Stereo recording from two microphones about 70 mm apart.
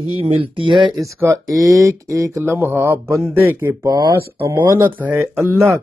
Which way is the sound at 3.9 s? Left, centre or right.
Right.